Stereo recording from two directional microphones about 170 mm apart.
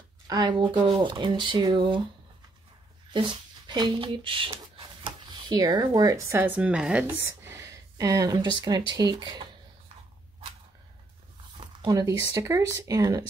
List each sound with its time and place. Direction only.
0.3 s speech: 25° right (ahead or behind)
3.1 s speech: 30° right (ahead or behind)
11.8 s speech: 20° right (ahead or behind)